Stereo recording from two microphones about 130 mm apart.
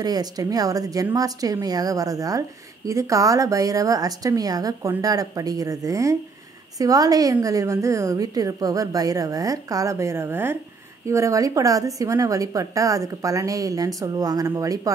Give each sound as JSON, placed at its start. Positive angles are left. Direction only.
{"t": 0.0, "sound": "a woman's voice", "side_deg": -30}